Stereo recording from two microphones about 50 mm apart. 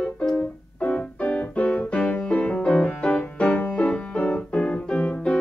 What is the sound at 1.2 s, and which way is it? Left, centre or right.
Piano, left.